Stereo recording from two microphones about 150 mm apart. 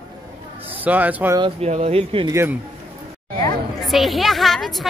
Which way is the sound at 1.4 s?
45° right (ahead or behind).